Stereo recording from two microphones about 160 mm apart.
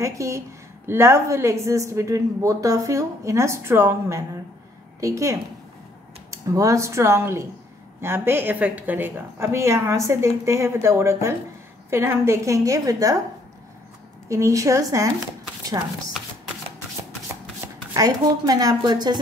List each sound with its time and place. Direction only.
0.0 s a woman's voice: 20° right (ahead or behind)
14.3 s a woman's voice: 20° right (ahead or behind)
17.9 s a woman's voice: 20° right (ahead or behind)